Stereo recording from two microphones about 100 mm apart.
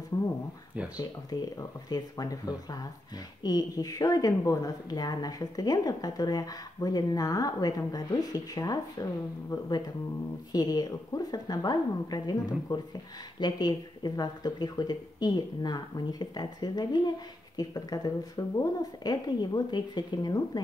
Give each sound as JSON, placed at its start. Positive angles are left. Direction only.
{"t": 0.9, "sound": "speech", "side_deg": 40}